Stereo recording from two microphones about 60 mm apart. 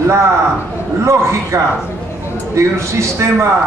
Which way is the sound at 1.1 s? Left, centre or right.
Right.